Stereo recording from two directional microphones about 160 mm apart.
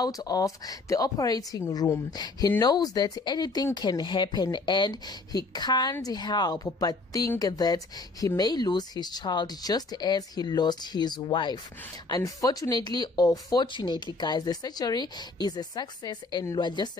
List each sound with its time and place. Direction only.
0.0 s speech: 25° left (ahead or behind)